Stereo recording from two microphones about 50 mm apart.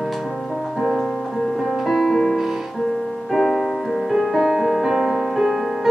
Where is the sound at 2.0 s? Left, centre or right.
Centre.